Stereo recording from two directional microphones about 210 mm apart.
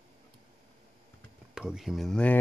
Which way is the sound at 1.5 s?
Centre (ahead or behind).